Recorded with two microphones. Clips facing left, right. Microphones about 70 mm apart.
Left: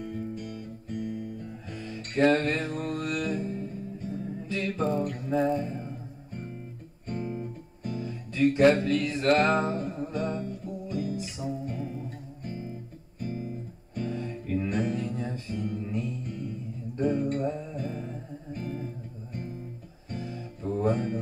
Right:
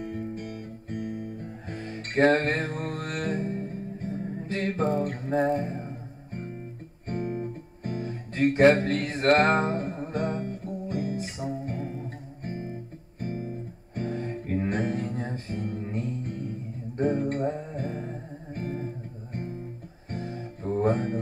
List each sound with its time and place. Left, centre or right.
0.0 s music: right